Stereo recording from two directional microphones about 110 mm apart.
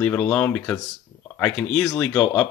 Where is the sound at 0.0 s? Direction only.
15° left (ahead or behind).